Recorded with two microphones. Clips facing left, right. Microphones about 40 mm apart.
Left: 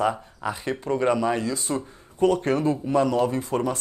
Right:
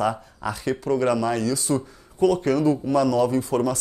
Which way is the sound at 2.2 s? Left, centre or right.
Left.